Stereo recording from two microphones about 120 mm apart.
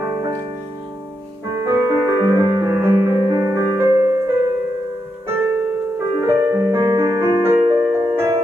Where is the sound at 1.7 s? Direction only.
20° right (ahead or behind).